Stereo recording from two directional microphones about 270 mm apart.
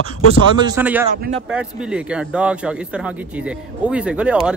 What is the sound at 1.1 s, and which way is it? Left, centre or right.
Speech, right.